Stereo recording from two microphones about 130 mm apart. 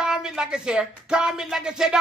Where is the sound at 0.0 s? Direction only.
5° right (ahead or behind).